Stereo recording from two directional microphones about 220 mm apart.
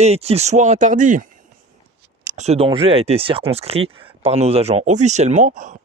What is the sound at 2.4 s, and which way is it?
Speech, 30° right (ahead or behind).